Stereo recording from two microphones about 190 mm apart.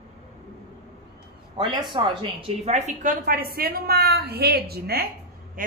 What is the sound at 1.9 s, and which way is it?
A woman's voice, 25° right (ahead or behind).